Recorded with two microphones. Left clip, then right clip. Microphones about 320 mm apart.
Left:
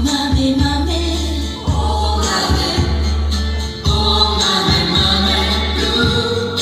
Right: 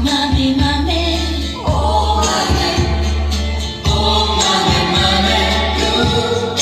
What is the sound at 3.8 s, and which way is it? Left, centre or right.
Music, centre.